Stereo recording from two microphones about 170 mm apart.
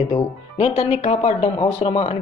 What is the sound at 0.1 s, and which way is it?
Speech, 35° left (ahead or behind).